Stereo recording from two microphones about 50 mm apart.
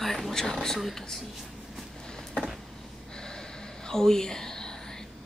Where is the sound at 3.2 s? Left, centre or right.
Centre.